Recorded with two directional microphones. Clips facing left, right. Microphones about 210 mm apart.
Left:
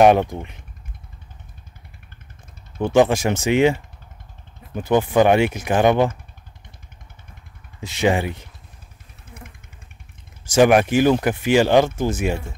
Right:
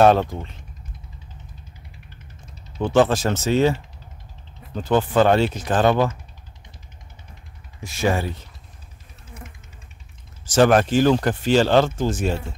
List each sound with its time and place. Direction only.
0.0 s speech: 15° left (ahead or behind)
2.8 s speech: 10° left (ahead or behind)
7.8 s speech: 20° left (ahead or behind)
10.5 s speech: 10° left (ahead or behind)